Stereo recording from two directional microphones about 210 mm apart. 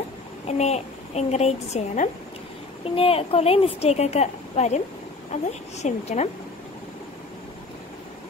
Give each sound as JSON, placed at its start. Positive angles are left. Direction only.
{"t": 0.5, "sound": "a woman's voice", "side_deg": 30}